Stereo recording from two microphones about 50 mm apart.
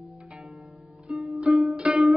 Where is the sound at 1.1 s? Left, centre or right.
Centre.